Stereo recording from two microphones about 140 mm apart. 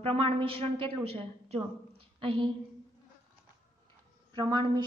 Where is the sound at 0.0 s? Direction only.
45° right (ahead or behind).